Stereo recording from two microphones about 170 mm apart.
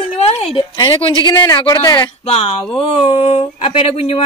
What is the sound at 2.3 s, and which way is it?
Speech, 35° left (ahead or behind).